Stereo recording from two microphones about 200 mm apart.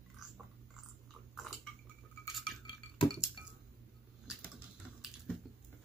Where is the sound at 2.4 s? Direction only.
25° left (ahead or behind).